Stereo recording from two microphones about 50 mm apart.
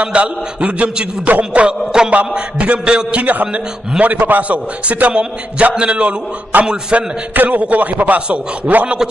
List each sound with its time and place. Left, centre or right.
0.0 s a man's voice: right
3.2 s a man's voice: right
7.3 s a man's voice: right